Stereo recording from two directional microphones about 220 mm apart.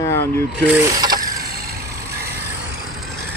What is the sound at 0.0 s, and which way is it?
Vehicle, 10° left (ahead or behind).